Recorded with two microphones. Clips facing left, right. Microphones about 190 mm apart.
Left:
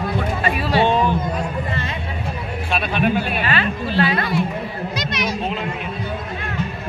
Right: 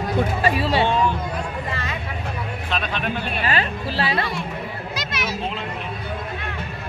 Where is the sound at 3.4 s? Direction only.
35° right (ahead or behind).